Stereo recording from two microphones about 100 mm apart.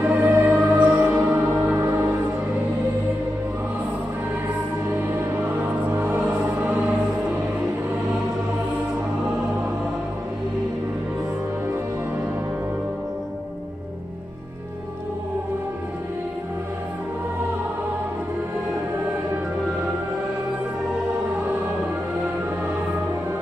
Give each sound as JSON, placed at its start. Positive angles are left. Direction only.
{"t": 0.0, "sound": "music", "side_deg": -25}
{"t": 4.9, "sound": "music", "side_deg": -25}